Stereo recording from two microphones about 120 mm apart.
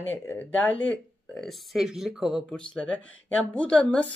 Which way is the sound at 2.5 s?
10° left (ahead or behind).